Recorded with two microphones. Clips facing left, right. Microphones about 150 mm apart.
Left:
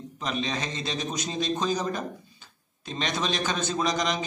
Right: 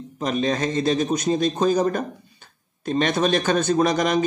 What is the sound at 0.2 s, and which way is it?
Speech, 45° right (ahead or behind).